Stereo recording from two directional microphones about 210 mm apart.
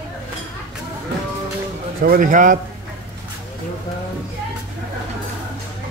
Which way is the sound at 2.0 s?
40° right (ahead or behind).